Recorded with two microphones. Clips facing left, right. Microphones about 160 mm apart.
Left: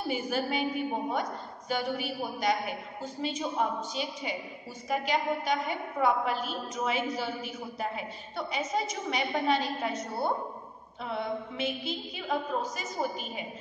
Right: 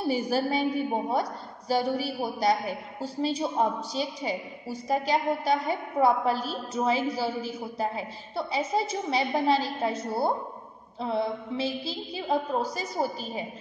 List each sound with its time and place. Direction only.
0.1 s a woman's voice: 35° right (ahead or behind)